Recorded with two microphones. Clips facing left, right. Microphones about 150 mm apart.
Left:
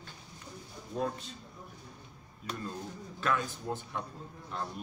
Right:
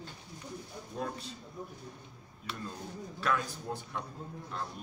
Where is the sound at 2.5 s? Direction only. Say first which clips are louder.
Left 3 dB; 40° left (ahead or behind).